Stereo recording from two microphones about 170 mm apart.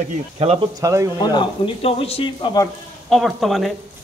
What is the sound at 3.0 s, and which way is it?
Speech, centre (ahead or behind).